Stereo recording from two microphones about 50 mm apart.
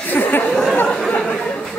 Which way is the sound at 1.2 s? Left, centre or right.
Centre.